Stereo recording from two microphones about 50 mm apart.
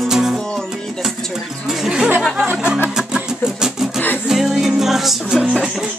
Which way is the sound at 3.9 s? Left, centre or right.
Left.